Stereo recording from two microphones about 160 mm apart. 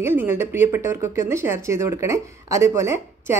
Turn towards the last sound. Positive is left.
turn(degrees=-15)  # may be behind; listen again after turning